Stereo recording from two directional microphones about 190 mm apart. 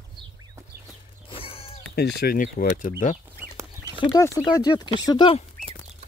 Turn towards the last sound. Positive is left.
turn(degrees=25)  # may be behind; listen again after turning